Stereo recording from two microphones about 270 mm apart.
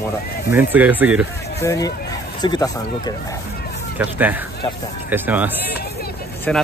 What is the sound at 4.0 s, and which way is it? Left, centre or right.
Speech, centre.